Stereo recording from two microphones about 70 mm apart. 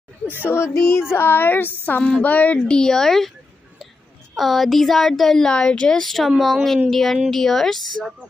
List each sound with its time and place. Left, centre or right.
0.3 s speech: left
2.8 s speech: centre
4.4 s speech: centre